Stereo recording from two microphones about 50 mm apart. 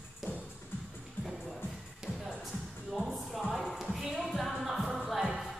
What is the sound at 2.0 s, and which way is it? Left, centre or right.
Music, centre.